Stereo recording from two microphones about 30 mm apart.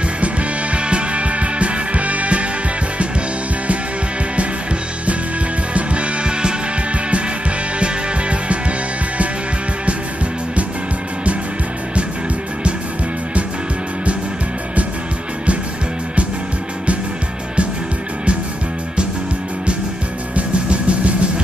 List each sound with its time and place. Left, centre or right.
0.2 s music: right
5.7 s music: right
7.8 s music: right
20.3 s music: right